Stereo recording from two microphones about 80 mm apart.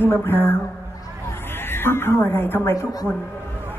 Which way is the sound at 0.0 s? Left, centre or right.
Left.